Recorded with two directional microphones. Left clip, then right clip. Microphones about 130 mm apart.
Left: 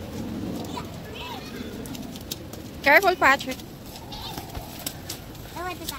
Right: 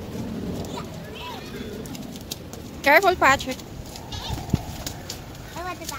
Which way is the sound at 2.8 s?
20° right (ahead or behind).